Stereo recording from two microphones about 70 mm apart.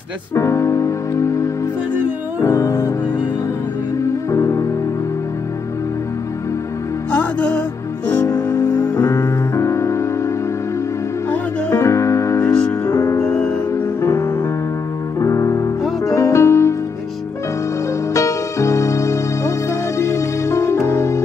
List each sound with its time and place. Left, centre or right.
0.3 s music: left
2.4 s music: left
4.3 s music: left
7.1 s music: left
8.5 s music: left
9.0 s music: left
11.8 s music: left
15.1 s music: left
18.1 s music: left